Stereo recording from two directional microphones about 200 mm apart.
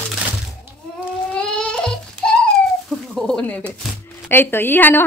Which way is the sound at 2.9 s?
Centre (ahead or behind).